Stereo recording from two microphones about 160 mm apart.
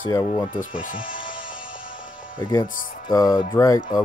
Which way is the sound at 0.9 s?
30° left (ahead or behind).